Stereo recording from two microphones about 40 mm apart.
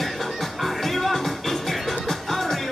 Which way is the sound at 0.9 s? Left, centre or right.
Centre.